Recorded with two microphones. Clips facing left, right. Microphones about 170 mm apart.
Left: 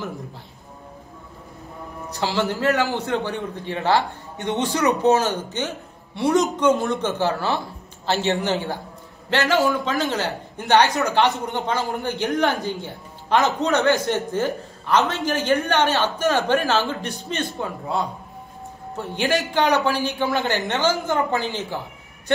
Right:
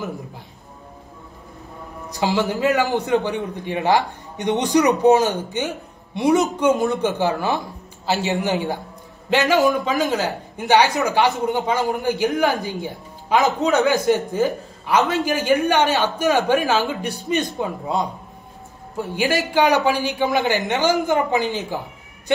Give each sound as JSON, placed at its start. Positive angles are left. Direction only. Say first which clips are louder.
{"t": 2.0, "sound": "a man's voice", "louder": "right 3 dB", "side_deg": -15}